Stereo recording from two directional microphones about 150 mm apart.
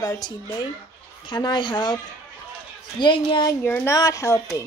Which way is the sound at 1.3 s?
30° left (ahead or behind).